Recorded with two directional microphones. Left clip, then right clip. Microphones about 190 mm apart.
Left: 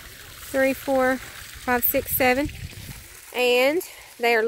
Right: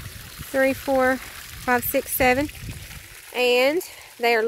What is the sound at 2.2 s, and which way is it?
Speech, centre (ahead or behind).